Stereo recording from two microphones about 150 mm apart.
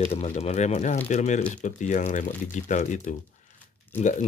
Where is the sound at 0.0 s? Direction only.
45° left (ahead or behind).